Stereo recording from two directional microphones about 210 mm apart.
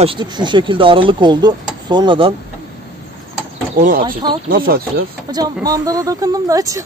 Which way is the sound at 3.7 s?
40° right (ahead or behind).